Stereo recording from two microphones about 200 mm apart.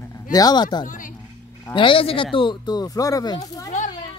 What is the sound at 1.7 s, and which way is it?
Speech, 25° left (ahead or behind).